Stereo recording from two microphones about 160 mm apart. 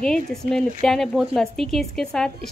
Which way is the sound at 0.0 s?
5° left (ahead or behind).